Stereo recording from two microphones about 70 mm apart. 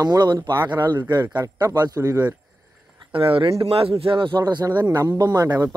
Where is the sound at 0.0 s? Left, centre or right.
Right.